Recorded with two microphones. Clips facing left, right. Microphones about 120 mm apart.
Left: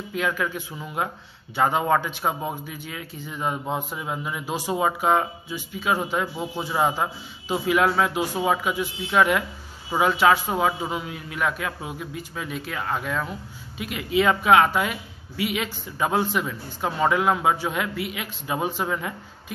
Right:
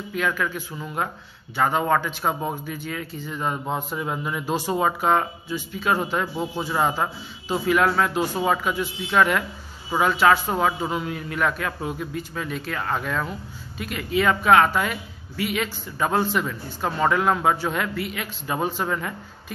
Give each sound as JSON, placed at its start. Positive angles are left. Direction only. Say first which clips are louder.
{"t": 0.1, "sound": "a woman's voice", "louder": "right 1 dB", "side_deg": 20}